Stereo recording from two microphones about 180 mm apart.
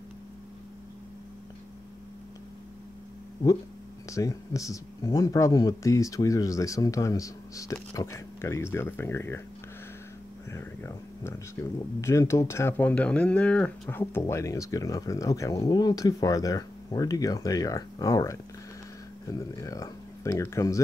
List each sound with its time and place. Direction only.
4.1 s speech: 15° left (ahead or behind)
10.5 s speech: 15° left (ahead or behind)